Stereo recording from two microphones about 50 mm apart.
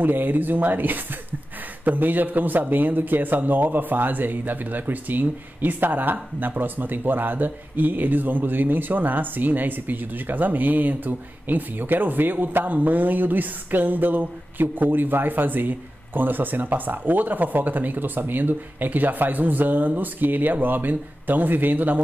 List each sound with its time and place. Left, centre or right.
0.0 s a man's voice: right